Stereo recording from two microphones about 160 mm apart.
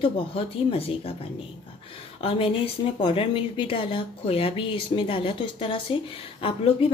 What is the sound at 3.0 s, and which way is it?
Speech, 30° left (ahead or behind).